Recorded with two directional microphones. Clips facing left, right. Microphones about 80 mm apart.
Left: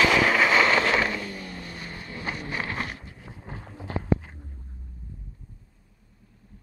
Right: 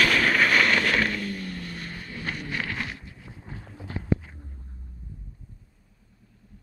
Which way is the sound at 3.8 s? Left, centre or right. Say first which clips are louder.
Left 2 dB; left.